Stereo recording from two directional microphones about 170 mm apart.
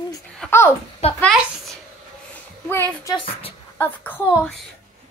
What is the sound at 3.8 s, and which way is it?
Speech, 10° left (ahead or behind).